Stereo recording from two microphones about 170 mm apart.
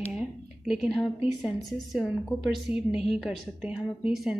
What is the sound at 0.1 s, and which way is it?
A woman's voice, 5° right (ahead or behind).